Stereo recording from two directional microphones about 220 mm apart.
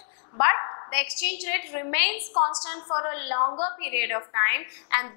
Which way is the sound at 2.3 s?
30° left (ahead or behind).